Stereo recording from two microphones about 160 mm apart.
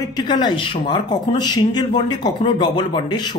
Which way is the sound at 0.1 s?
30° left (ahead or behind).